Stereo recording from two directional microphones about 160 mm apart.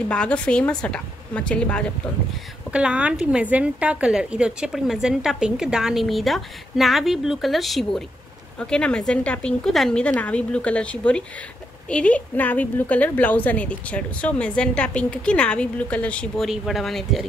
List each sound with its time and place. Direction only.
0.1 s a woman's voice: 5° left (ahead or behind)
2.7 s a woman's voice: 5° right (ahead or behind)